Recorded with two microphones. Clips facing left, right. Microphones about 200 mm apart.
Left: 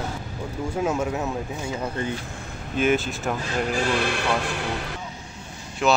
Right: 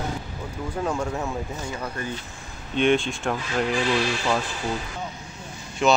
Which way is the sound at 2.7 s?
5° left (ahead or behind).